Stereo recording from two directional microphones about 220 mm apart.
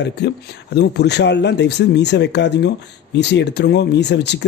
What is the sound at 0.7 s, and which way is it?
Speech, 50° left (ahead or behind).